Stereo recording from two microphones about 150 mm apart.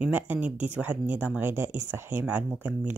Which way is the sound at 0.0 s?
10° right (ahead or behind).